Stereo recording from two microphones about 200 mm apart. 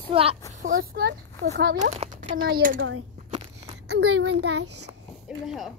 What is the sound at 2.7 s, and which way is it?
Speech, 75° right (ahead or behind).